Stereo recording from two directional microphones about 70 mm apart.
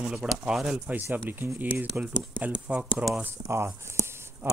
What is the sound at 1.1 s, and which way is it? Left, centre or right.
Speech, right.